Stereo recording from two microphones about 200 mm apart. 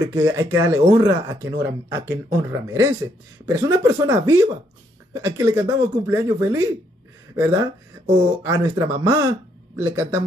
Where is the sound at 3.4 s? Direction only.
15° right (ahead or behind).